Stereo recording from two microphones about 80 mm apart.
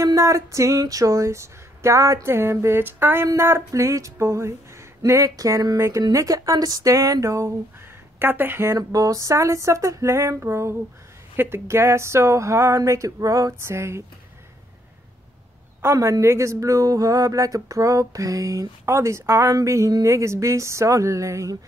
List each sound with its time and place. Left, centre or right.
0.0 s speech: right
5.8 s speech: right
6.1 s speech: right
8.2 s speech: right
8.7 s speech: right
15.8 s speech: right